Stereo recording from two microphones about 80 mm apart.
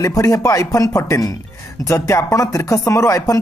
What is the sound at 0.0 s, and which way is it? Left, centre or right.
Speech, left.